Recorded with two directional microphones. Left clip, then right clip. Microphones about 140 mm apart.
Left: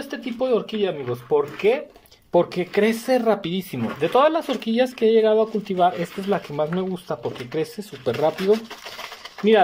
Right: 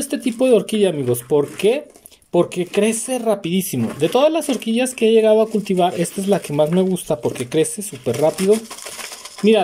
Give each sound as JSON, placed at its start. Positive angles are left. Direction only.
{"t": 0.0, "sound": "speech", "side_deg": -35}
{"t": 2.3, "sound": "speech", "side_deg": -20}
{"t": 8.0, "sound": "speech", "side_deg": -20}